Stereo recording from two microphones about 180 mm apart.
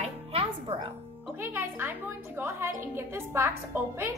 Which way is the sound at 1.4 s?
10° right (ahead or behind).